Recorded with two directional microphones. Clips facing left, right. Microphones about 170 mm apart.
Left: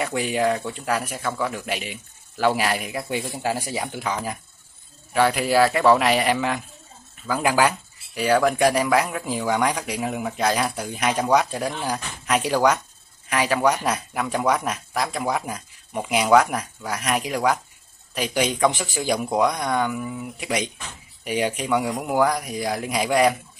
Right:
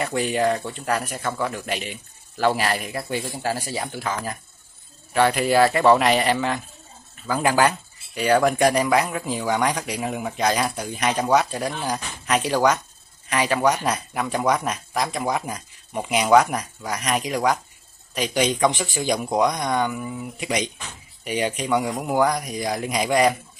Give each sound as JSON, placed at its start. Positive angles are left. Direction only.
{"t": 0.0, "sound": "speech", "side_deg": 5}